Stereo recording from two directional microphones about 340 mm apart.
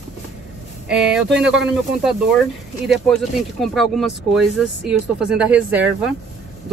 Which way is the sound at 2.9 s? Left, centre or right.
Centre.